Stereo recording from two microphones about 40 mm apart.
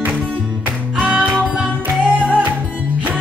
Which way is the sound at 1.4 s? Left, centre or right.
Right.